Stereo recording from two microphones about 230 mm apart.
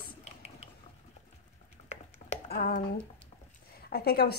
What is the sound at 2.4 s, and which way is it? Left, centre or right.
Speech, left.